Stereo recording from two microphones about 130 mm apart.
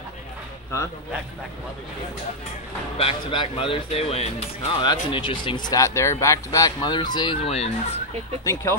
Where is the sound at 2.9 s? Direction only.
45° left (ahead or behind).